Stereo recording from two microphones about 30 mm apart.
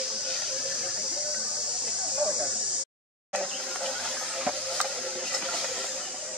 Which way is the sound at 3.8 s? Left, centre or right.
Centre.